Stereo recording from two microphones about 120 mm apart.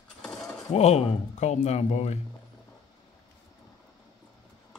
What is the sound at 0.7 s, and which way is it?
Speech, 65° left (ahead or behind).